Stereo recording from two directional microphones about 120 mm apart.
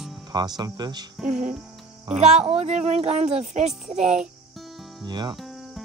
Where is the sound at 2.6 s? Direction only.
65° right (ahead or behind).